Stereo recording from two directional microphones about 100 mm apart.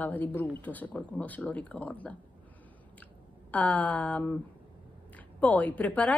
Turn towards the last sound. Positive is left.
turn(degrees=15)  # may be behind; listen again after turning